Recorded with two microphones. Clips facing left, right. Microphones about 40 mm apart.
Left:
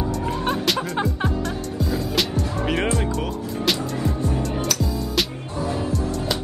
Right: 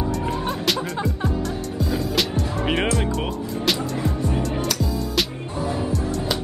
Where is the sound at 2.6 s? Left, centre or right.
Centre.